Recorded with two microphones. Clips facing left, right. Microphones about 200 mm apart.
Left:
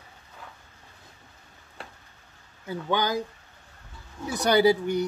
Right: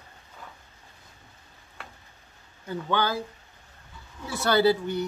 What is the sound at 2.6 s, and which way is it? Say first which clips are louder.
Speech: even; 15° left (ahead or behind).